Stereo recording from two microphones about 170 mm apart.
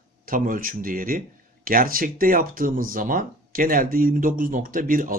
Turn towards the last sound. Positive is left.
turn(degrees=-55)  # may be behind; listen again after turning